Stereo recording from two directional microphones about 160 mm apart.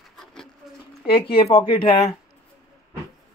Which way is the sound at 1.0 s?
35° left (ahead or behind).